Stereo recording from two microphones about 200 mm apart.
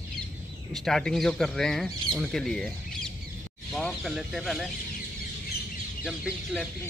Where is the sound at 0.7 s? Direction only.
Centre (ahead or behind).